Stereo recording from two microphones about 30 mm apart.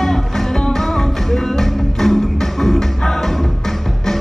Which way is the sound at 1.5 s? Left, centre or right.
Centre.